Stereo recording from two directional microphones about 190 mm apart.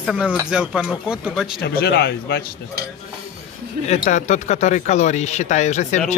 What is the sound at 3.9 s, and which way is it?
Speech, 40° left (ahead or behind).